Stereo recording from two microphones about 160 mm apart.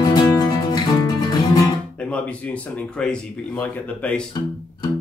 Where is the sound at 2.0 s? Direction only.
10° left (ahead or behind).